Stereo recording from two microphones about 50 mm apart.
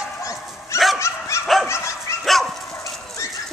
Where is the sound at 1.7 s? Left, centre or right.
Left.